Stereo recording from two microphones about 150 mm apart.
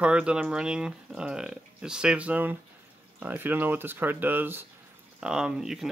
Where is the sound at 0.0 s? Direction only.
5° right (ahead or behind).